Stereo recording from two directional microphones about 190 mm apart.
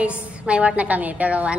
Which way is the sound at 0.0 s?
5° right (ahead or behind).